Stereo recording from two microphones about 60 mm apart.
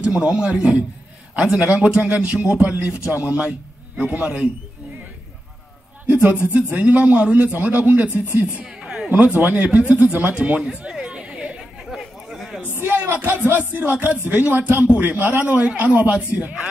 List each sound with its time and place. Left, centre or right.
0.0 s a man's voice: centre
6.0 s a man's voice: right
8.5 s a sound: centre
9.1 s speech: right
10.6 s chatter: centre
12.0 s a sound: centre
12.7 s music: right
14.0 s a man's voice: right